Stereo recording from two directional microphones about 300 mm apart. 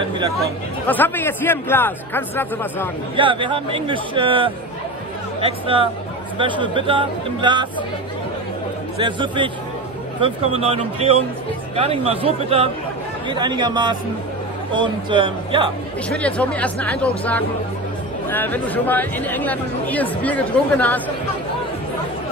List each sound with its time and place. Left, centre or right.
0.8 s a man's voice: centre
3.2 s speech: centre
8.9 s speech: centre
16.1 s speech: centre